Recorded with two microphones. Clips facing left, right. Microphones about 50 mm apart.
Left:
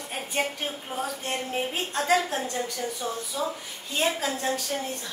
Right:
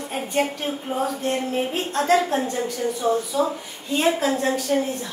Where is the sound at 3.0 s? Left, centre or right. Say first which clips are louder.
Right 13 dB; right.